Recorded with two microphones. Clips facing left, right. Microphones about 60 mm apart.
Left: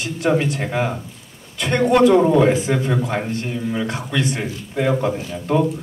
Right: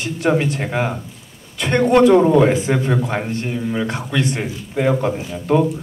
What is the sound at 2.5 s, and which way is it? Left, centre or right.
Speech, right.